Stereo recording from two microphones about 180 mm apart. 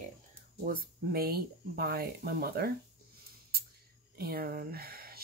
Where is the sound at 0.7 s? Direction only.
55° right (ahead or behind).